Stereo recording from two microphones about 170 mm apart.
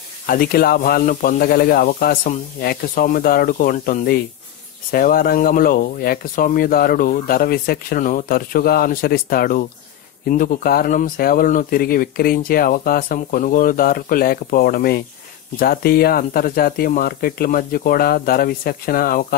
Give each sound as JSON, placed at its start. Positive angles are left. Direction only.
{"t": 0.3, "sound": "speech", "side_deg": 60}